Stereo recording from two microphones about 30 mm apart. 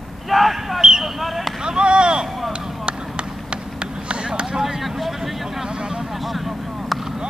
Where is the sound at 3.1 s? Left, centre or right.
Right.